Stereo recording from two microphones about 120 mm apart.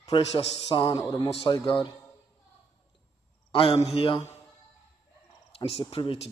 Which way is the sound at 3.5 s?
50° left (ahead or behind).